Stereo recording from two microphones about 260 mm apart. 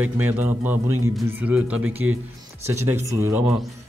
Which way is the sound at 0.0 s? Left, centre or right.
Centre.